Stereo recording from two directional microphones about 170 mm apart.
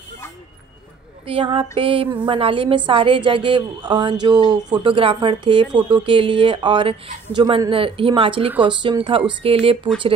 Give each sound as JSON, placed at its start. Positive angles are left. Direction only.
{"t": 1.2, "sound": "speech", "side_deg": -30}